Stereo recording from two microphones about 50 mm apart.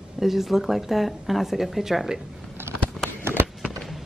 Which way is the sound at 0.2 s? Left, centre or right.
Centre.